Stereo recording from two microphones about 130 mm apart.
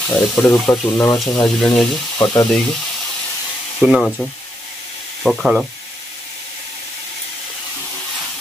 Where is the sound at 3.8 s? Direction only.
5° right (ahead or behind).